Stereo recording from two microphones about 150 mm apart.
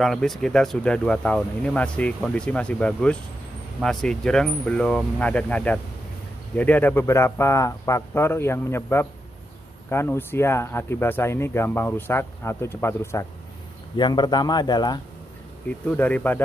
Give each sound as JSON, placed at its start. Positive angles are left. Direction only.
{"t": 0.0, "sound": "speech", "side_deg": 0}
{"t": 13.9, "sound": "speech", "side_deg": 30}
{"t": 15.9, "sound": "speech", "side_deg": 10}